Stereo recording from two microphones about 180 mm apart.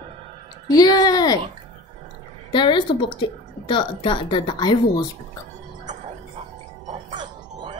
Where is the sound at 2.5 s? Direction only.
25° left (ahead or behind).